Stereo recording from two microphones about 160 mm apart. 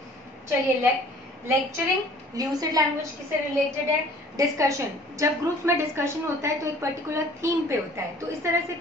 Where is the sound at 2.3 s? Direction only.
20° right (ahead or behind).